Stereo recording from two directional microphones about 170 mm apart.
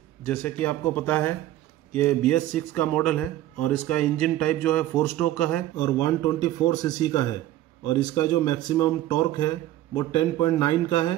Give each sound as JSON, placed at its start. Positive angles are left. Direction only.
{"t": 0.2, "sound": "a man's voice", "side_deg": 5}
{"t": 5.8, "sound": "speech", "side_deg": 20}